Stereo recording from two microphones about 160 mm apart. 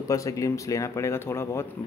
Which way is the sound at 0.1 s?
20° left (ahead or behind).